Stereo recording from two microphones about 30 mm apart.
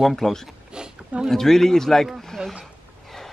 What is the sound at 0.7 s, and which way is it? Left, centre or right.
Roaring cats, right.